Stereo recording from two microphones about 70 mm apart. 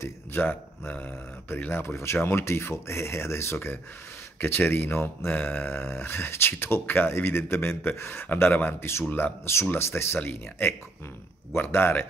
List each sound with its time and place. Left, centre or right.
0.0 s speech: left
11.5 s speech: left